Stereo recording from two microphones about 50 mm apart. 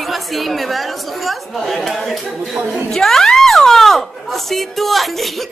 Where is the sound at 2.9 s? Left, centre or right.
Centre.